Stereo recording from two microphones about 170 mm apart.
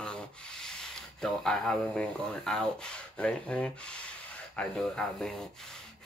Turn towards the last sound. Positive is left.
turn(degrees=5)  # may be behind; listen again after turning